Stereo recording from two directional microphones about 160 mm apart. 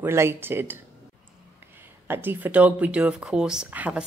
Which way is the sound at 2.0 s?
15° right (ahead or behind).